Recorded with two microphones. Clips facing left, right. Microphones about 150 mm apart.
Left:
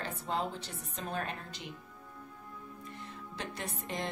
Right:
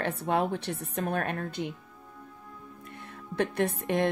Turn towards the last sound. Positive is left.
turn(degrees=-60)  # may be behind; listen again after turning